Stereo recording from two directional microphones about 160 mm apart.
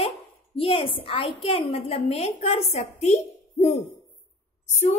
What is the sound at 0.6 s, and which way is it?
Speech, 35° left (ahead or behind).